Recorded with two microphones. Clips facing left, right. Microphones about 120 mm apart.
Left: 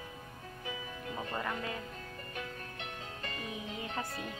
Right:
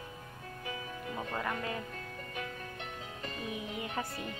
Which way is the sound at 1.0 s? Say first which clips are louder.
Right 1 dB; centre (ahead or behind).